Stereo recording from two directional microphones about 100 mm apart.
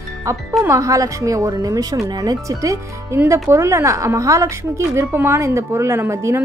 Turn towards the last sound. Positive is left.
turn(degrees=-25)  # may be behind; listen again after turning